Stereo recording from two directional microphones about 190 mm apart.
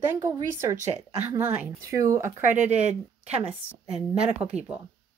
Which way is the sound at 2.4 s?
40° right (ahead or behind).